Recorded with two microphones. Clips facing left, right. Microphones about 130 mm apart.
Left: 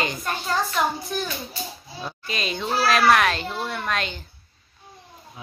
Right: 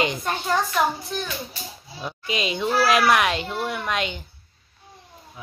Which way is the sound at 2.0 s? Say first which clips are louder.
Right 3 dB; 15° right (ahead or behind).